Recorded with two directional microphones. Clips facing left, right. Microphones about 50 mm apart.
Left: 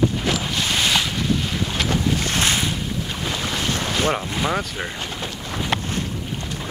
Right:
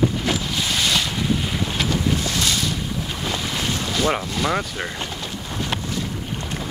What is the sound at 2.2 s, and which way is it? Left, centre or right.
Boat, left.